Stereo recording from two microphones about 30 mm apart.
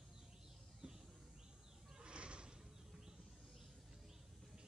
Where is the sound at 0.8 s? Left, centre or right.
Right.